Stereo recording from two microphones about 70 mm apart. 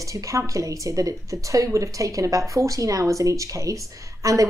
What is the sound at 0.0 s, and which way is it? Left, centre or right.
A woman's voice, right.